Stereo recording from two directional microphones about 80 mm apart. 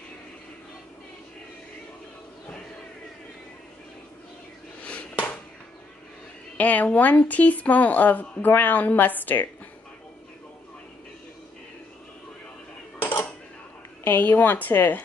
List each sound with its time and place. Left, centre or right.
4.8 s a sound: centre
6.5 s speech: centre
13.0 s cutlery: left
14.0 s speech: left